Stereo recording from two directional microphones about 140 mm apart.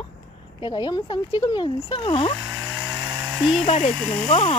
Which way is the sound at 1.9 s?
35° left (ahead or behind).